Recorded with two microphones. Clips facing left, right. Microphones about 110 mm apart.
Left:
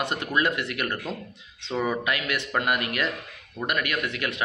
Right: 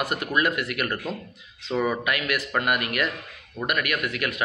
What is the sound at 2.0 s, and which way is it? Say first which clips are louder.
Speech: right 1 dB; 25° left (ahead or behind).